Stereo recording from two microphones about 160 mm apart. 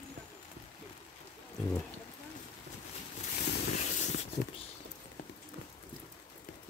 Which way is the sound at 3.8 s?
45° left (ahead or behind).